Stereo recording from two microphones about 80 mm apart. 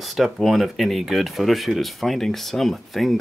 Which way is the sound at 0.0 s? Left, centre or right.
Centre.